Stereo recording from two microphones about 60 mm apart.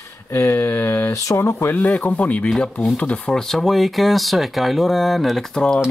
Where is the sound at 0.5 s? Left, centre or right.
Left.